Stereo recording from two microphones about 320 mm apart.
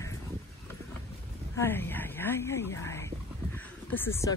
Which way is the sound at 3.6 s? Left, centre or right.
Centre.